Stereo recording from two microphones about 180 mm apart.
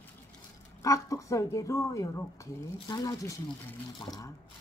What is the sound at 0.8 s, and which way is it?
A woman's voice, 15° left (ahead or behind).